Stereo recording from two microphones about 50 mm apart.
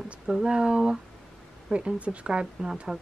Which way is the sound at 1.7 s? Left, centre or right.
Right.